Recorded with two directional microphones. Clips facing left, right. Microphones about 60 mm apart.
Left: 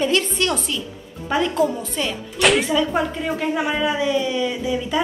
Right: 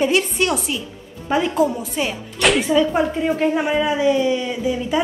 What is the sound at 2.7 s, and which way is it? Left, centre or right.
Speech, centre.